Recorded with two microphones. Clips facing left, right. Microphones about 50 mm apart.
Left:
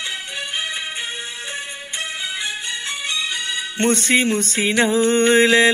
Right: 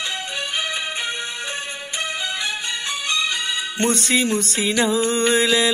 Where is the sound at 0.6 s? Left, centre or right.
Centre.